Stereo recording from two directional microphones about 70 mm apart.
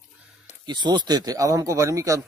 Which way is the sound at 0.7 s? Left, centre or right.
Right.